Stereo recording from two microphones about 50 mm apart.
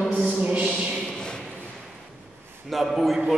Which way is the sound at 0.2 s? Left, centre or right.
Right.